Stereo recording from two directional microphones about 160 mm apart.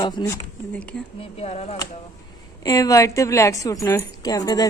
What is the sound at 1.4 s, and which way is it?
Speech, 40° left (ahead or behind).